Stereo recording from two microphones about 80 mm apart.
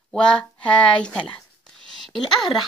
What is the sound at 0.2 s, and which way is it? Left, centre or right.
A woman's voice, centre.